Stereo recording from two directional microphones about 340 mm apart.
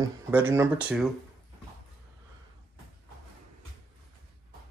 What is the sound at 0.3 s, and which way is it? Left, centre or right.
Speech, centre.